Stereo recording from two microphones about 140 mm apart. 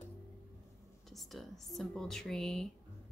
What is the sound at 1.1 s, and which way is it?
Speech, centre (ahead or behind).